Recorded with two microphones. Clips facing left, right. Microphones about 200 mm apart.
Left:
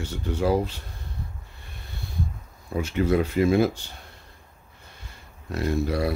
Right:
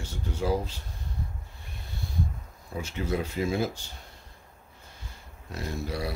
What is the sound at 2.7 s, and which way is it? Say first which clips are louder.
Speech: left 8 dB; 65° left (ahead or behind).